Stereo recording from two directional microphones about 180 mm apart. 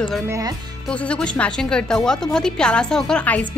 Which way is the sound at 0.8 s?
5° left (ahead or behind).